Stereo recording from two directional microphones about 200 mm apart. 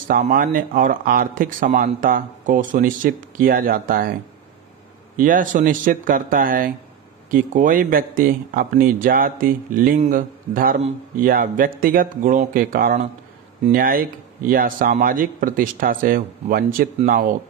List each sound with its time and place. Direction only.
0.1 s speech: 45° right (ahead or behind)